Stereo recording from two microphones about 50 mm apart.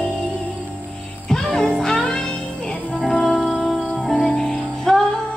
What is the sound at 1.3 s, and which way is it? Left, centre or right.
Music, centre.